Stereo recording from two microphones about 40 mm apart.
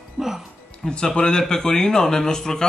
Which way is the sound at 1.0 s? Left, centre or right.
Left.